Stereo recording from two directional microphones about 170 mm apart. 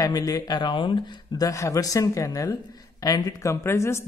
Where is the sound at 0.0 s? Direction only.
20° left (ahead or behind).